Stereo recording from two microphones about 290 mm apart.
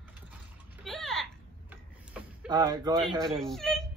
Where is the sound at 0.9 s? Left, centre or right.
Centre.